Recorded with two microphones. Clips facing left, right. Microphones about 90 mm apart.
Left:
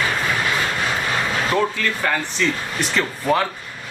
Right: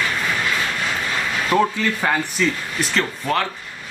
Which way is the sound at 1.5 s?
15° right (ahead or behind).